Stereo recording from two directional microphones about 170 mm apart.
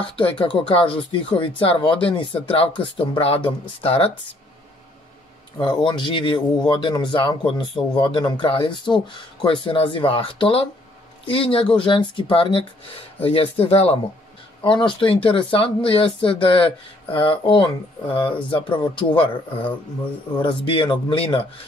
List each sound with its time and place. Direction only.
0.0 s speech: 30° left (ahead or behind)
5.6 s speech: 25° left (ahead or behind)